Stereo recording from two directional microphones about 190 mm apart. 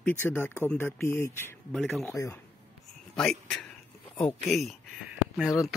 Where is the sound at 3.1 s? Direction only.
5° left (ahead or behind).